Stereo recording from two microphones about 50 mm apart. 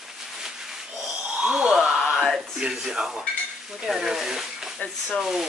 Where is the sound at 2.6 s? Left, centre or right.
Centre.